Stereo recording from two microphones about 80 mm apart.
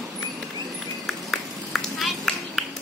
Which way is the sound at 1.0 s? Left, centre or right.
Centre.